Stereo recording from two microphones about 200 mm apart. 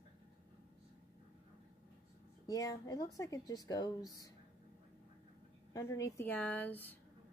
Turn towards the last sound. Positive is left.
turn(degrees=10)  # may be behind; listen again after turning